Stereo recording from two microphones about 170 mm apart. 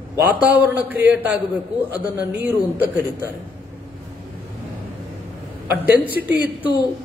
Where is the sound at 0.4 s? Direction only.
10° right (ahead or behind).